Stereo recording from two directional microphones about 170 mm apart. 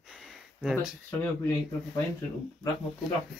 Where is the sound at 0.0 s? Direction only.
Centre (ahead or behind).